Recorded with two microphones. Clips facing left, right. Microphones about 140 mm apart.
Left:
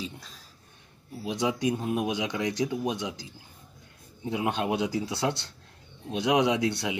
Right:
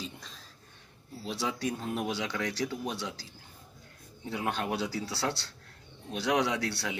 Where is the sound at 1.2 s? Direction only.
15° left (ahead or behind).